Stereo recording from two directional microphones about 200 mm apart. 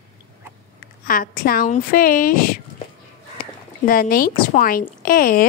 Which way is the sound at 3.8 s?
45° left (ahead or behind).